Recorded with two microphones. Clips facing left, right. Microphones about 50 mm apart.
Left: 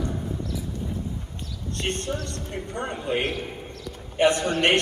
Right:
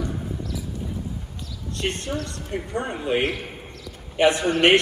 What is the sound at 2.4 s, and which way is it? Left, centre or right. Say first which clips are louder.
Speech: right 4 dB; right.